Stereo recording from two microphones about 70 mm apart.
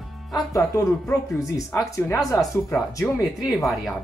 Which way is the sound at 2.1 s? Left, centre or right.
Left.